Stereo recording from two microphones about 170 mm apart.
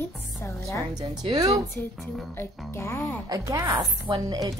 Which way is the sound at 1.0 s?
20° right (ahead or behind).